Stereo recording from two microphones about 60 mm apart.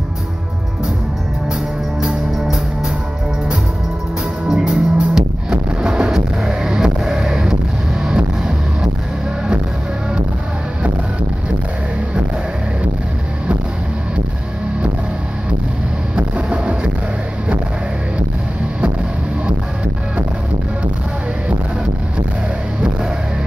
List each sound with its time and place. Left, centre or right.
2.0 s music: centre
4.5 s music: centre
16.2 s vehicle: centre